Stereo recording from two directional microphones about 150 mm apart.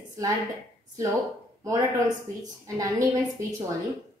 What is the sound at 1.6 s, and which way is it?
Speech, 25° right (ahead or behind).